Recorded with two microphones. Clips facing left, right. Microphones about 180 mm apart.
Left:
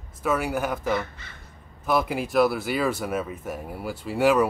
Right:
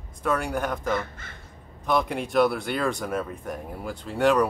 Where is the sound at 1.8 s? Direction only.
5° left (ahead or behind).